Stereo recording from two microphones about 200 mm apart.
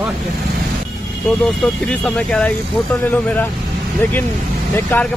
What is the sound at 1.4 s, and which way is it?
Speech, centre (ahead or behind).